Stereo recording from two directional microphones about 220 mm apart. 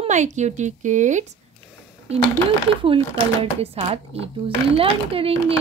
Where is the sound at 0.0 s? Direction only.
35° right (ahead or behind).